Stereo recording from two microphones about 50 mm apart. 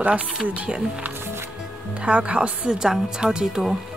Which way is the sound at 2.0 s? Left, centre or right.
Right.